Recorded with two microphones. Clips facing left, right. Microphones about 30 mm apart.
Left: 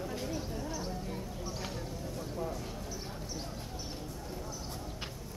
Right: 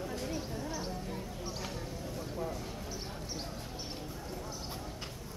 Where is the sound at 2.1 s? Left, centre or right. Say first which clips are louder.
Even; centre.